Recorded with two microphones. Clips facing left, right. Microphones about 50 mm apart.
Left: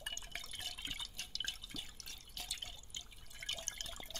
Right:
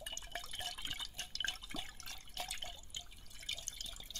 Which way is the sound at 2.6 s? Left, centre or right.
Centre.